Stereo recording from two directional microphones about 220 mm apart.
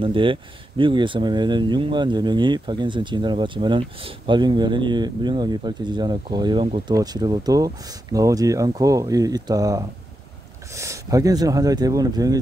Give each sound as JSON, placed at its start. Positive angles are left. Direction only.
{"t": 0.0, "sound": "speech", "side_deg": -25}